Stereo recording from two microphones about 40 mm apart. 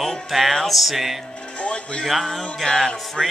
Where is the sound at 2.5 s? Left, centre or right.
Centre.